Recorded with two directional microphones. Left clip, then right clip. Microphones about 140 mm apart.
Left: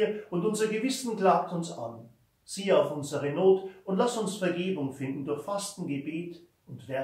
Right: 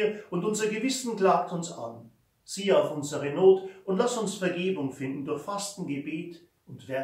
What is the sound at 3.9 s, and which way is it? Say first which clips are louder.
Speech: right 1 dB; 15° right (ahead or behind).